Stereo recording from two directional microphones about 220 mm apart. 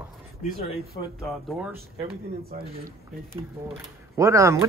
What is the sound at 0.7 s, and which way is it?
Speech, 15° left (ahead or behind).